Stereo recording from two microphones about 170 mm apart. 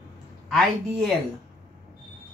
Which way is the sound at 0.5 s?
Centre (ahead or behind).